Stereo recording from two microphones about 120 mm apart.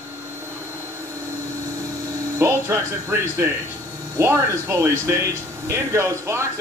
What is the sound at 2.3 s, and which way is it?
A man's voice, 20° right (ahead or behind).